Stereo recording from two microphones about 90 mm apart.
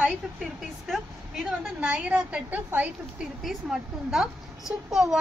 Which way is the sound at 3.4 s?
5° right (ahead or behind).